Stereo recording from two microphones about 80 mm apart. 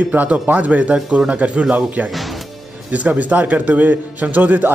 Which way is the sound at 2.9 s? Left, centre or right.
Centre.